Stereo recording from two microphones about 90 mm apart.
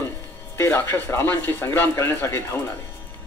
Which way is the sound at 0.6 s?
30° left (ahead or behind).